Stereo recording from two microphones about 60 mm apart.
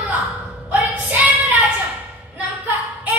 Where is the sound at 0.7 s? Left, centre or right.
Right.